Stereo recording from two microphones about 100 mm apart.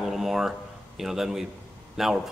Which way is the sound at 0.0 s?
Centre (ahead or behind).